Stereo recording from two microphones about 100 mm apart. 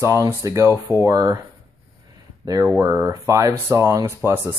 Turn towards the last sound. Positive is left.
turn(degrees=-25)  # may be behind; listen again after turning